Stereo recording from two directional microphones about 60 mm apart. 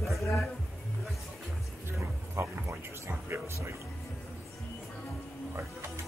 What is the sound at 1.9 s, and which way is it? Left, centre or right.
Music, right.